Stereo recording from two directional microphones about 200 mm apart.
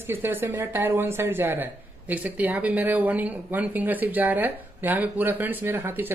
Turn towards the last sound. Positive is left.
turn(degrees=-10)  # may be behind; listen again after turning